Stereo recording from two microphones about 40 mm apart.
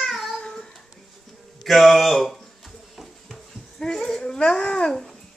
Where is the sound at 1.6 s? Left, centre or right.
Centre.